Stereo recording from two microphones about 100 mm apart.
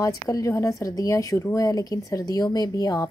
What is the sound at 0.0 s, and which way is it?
Speech, 35° left (ahead or behind).